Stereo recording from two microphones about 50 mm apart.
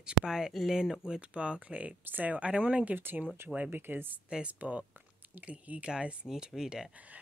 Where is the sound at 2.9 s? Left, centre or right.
Right.